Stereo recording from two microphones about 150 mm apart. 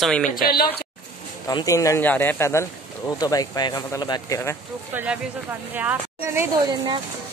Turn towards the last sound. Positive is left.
turn(degrees=-25)  # may be behind; listen again after turning